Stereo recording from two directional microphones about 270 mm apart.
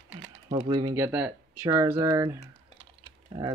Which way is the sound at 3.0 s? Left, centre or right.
Centre.